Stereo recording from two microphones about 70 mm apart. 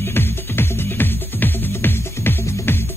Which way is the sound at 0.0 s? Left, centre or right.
Left.